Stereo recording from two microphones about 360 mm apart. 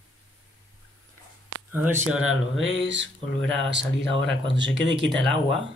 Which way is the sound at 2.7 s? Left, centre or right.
Right.